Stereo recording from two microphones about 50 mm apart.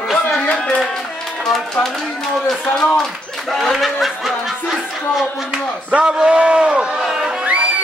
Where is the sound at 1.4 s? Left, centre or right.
Centre.